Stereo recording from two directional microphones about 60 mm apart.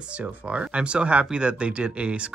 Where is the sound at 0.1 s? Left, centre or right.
Right.